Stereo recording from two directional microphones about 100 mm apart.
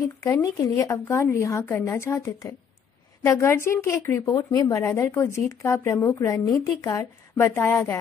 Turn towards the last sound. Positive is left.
turn(degrees=20)  # may be behind; listen again after turning